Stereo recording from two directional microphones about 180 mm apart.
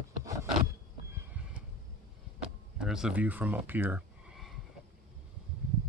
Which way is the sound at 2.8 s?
5° right (ahead or behind).